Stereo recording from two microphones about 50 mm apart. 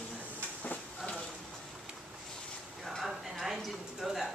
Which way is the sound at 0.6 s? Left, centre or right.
Left.